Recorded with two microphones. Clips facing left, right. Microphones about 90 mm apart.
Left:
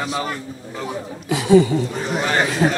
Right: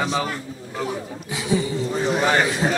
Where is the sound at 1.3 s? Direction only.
65° left (ahead or behind).